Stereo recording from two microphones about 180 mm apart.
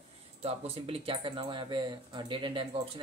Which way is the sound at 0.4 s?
30° right (ahead or behind).